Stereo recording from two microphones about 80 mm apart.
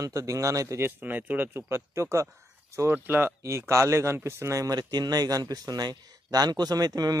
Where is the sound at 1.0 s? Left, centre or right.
Right.